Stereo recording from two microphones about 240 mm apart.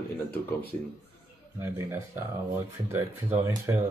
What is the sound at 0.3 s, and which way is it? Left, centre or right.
Speech, left.